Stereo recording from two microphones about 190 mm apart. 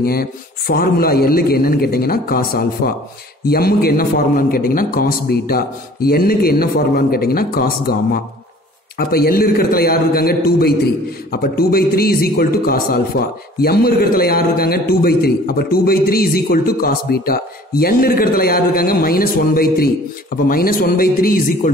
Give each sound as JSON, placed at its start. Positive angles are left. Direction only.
{"t": 0.0, "sound": "a man's voice", "side_deg": 50}